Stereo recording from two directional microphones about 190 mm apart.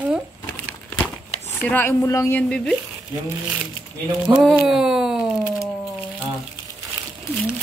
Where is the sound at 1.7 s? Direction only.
10° left (ahead or behind).